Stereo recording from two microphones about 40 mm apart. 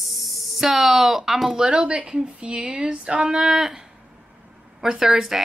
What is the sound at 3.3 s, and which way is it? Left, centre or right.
Speech, centre.